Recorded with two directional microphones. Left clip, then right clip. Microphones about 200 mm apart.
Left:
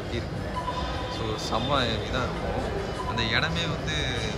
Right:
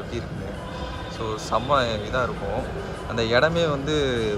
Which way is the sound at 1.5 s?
10° left (ahead or behind).